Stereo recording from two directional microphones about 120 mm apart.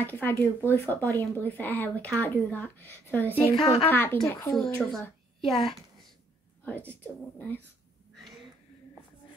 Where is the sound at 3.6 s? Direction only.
60° left (ahead or behind).